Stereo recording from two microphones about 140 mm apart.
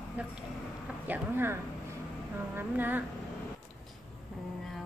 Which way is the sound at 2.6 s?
15° right (ahead or behind).